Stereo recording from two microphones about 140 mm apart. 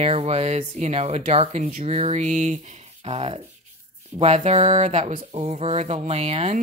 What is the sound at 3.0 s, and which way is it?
Speech, 45° right (ahead or behind).